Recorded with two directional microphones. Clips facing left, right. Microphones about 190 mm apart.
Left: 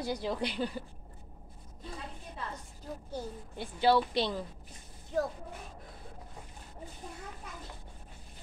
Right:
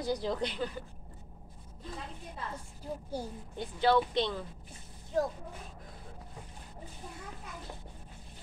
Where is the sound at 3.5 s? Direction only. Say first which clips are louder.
Even; 10° left (ahead or behind).